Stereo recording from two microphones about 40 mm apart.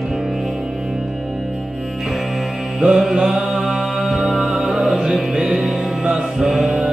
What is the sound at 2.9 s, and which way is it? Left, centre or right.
Music, centre.